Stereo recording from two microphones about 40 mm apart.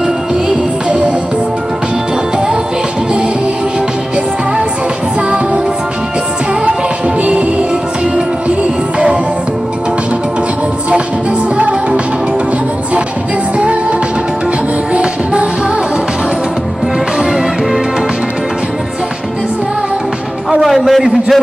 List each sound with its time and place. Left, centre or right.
0.8 s music: right
2.3 s music: right
7.2 s music: right
13.6 s music: right
20.5 s a sound: centre